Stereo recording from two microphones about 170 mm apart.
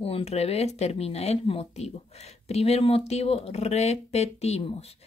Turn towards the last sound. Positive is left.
turn(degrees=35)  # may be behind; listen again after turning